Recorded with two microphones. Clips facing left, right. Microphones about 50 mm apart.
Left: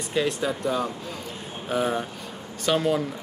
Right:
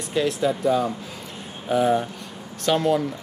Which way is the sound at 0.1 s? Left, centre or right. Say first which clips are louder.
Right 3 dB; centre.